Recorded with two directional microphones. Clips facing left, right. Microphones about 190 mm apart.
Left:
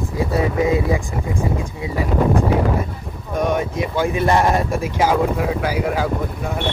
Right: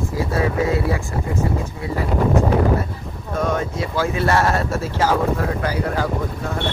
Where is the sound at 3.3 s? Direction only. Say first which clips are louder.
Left 2 dB; 15° left (ahead or behind).